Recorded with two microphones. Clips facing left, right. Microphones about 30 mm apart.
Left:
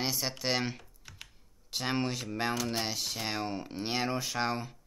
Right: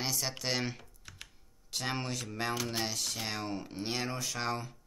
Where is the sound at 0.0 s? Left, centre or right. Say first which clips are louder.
Left 2 dB; centre.